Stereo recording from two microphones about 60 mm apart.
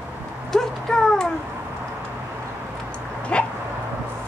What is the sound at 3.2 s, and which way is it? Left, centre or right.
Dog, centre.